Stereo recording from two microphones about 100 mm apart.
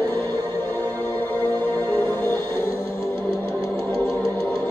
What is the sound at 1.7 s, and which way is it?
Music, 25° left (ahead or behind).